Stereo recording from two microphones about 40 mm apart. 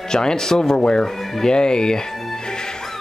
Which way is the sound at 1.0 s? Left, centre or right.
Centre.